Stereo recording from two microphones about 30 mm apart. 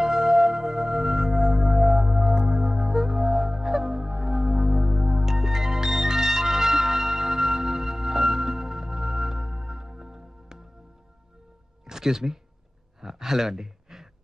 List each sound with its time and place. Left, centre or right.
0.0 s music: centre
11.8 s music: centre
13.0 s a sound: centre